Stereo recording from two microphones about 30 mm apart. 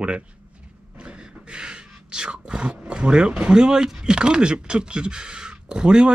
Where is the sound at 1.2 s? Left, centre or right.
Right.